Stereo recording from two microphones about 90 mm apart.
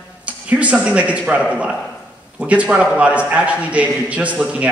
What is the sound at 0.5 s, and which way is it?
A man's voice, 15° right (ahead or behind).